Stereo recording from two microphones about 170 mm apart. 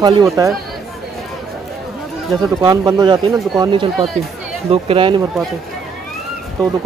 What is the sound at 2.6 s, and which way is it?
Speech, 25° right (ahead or behind).